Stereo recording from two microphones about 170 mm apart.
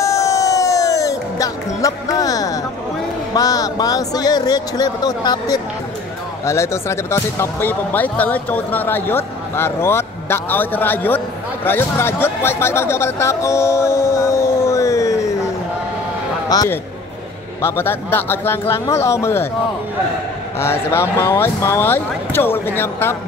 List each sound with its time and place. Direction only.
0.0 s music: 20° left (ahead or behind)
3.3 s speech: 20° left (ahead or behind)
16.4 s a man's voice: 20° left (ahead or behind)
20.5 s speech: 15° left (ahead or behind)